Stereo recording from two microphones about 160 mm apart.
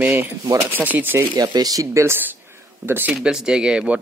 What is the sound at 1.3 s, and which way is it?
Speech, 25° right (ahead or behind).